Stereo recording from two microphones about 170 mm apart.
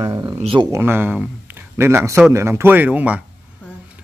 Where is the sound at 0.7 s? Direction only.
15° right (ahead or behind).